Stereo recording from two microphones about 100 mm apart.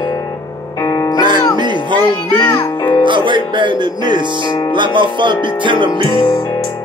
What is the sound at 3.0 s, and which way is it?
Music, 55° right (ahead or behind).